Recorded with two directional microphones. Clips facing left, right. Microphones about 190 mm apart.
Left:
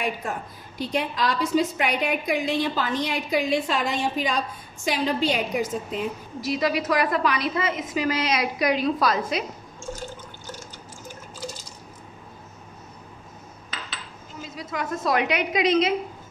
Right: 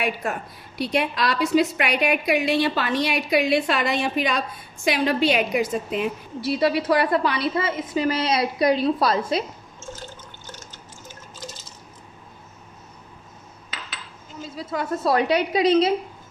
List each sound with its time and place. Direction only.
0.0 s a woman's voice: 70° right (ahead or behind)
6.4 s a woman's voice: 30° right (ahead or behind)
9.8 s drip: 10° left (ahead or behind)
14.5 s a woman's voice: 30° right (ahead or behind)